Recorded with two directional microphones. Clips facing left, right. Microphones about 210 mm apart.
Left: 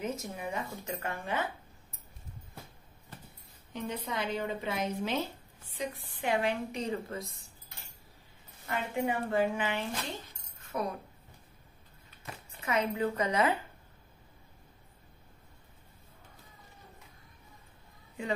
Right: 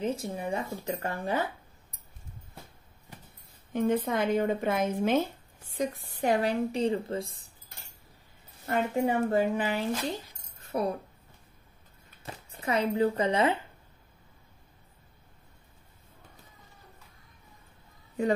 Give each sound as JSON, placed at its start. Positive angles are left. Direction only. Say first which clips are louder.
{"t": 0.0, "sound": "a woman's voice", "louder": "right 5 dB", "side_deg": -30}
{"t": 3.7, "sound": "a woman's voice", "louder": "right 10 dB", "side_deg": -50}
{"t": 8.6, "sound": "a woman's voice", "louder": "right 5 dB", "side_deg": -40}
{"t": 10.6, "sound": "a sound", "louder": "right 5 dB", "side_deg": -35}
{"t": 12.3, "sound": "speech", "louder": "right 4 dB", "side_deg": -30}